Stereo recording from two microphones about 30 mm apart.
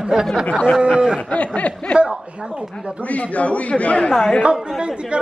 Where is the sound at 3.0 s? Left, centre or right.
Left.